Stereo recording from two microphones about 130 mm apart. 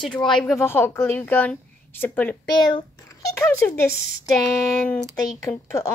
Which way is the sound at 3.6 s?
20° left (ahead or behind).